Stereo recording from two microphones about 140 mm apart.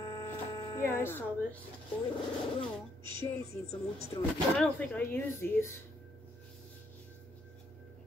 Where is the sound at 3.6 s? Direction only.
50° left (ahead or behind).